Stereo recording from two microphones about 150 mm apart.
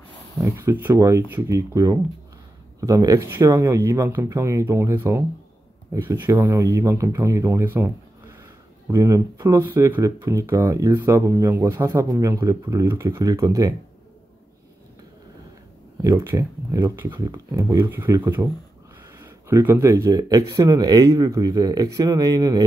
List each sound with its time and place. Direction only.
0.4 s speech: 20° right (ahead or behind)
16.0 s speech: 20° right (ahead or behind)